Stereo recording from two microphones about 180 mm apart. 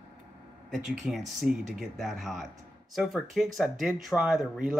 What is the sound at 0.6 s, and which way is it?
Speech, centre (ahead or behind).